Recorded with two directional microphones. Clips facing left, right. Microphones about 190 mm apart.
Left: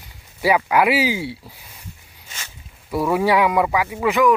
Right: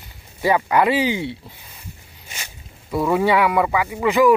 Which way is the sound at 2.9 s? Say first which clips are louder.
Even; 5° left (ahead or behind).